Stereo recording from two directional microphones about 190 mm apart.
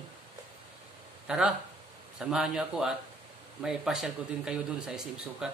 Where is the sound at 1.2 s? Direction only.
5° right (ahead or behind).